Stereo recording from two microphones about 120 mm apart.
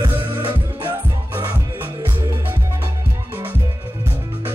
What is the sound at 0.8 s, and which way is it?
Music, 20° right (ahead or behind).